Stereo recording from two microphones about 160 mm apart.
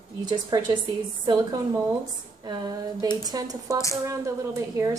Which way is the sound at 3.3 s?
25° right (ahead or behind).